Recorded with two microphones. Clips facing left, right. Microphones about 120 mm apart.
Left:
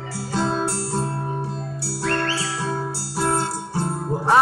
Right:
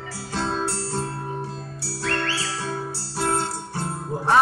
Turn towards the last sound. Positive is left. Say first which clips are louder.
# left 2 dB
turn(degrees=5)  # may be behind; listen again after turning